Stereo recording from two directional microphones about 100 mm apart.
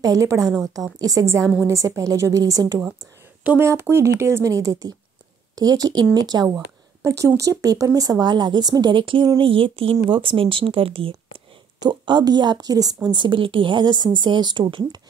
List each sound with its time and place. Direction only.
0.0 s speech: 35° right (ahead or behind)
3.4 s a woman's voice: 20° right (ahead or behind); by 6.6 s 40° right (ahead or behind)
7.0 s speech: 30° right (ahead or behind); by 11.4 s 65° right (ahead or behind)
11.8 s speech: 45° right (ahead or behind)